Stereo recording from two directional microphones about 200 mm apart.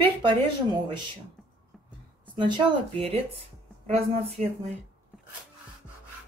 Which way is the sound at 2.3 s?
25° right (ahead or behind).